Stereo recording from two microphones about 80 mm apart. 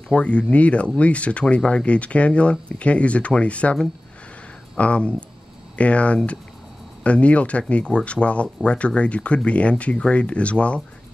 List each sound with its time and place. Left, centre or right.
0.1 s speech: centre
4.7 s speech: centre